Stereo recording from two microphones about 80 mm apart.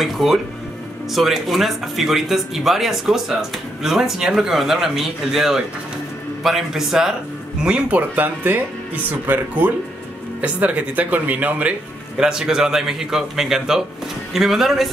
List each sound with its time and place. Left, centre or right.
0.0 s speech: centre
7.6 s a man's voice: centre